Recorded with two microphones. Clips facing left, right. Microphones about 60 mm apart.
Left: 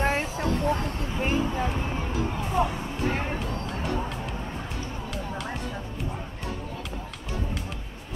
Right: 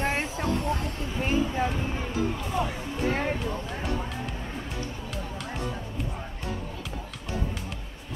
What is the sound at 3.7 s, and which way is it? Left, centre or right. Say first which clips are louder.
Music: left 2 dB; centre.